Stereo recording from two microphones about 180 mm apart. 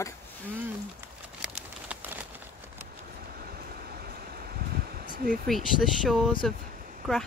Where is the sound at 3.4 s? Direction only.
60° right (ahead or behind).